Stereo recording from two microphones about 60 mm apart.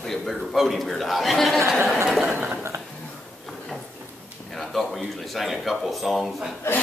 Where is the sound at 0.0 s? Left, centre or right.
Centre.